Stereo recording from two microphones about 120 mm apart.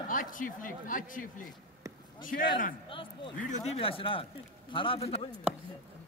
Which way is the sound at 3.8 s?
50° left (ahead or behind).